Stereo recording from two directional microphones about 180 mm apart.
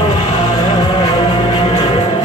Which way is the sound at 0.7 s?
25° left (ahead or behind).